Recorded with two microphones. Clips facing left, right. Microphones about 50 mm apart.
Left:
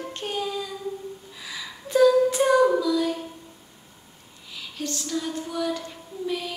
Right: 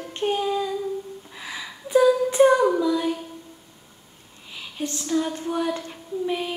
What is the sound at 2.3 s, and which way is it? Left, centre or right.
Singing, right.